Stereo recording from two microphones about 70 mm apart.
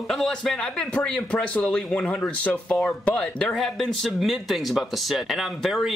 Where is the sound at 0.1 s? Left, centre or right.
Centre.